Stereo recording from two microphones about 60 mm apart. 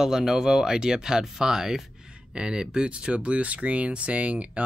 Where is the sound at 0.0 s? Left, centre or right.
Centre.